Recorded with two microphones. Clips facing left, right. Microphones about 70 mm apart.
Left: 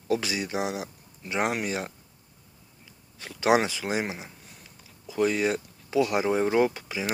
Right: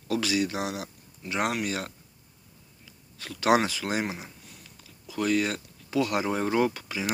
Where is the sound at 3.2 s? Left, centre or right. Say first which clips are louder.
Even; centre.